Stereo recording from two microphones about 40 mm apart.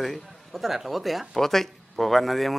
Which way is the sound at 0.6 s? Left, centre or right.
Centre.